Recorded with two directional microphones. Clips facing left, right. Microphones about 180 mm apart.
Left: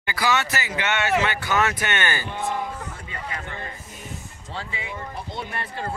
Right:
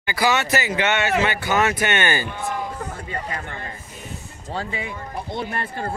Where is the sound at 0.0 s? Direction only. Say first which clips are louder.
Right 3 dB; 15° right (ahead or behind).